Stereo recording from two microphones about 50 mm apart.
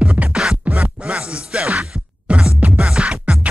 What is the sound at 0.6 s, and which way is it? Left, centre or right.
Music, right.